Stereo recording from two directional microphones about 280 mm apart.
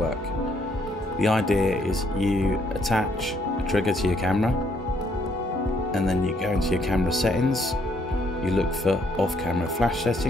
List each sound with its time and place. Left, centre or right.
1.2 s speech: centre
5.9 s speech: centre